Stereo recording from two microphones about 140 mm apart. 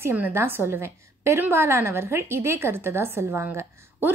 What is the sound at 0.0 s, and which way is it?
A woman's voice, 15° right (ahead or behind).